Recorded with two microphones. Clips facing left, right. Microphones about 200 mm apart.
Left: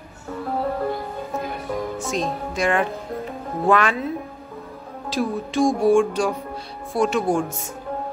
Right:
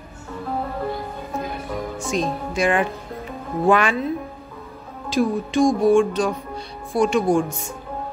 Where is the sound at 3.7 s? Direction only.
Centre (ahead or behind).